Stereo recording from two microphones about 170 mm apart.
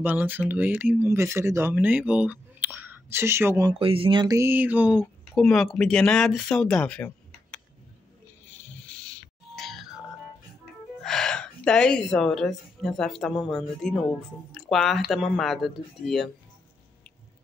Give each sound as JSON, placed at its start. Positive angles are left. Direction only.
{"t": 0.0, "sound": "speech", "side_deg": -10}
{"t": 3.8, "sound": "speech", "side_deg": -35}
{"t": 8.8, "sound": "a sound", "side_deg": 5}
{"t": 10.6, "sound": "speech", "side_deg": 0}